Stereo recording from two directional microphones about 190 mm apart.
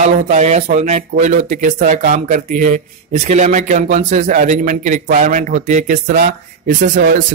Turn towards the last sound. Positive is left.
turn(degrees=-45)  # may be behind; listen again after turning